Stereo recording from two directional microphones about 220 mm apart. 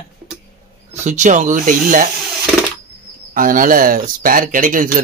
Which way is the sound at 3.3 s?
40° right (ahead or behind).